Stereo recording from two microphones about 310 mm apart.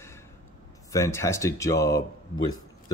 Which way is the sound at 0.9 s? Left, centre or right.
Centre.